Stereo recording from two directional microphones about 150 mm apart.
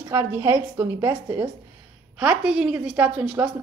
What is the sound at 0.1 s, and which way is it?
A woman's voice, 15° right (ahead or behind).